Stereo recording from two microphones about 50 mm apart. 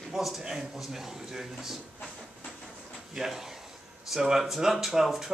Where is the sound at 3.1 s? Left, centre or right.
Centre.